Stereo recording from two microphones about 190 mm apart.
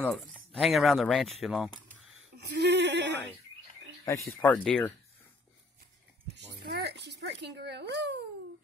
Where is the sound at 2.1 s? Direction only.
60° right (ahead or behind).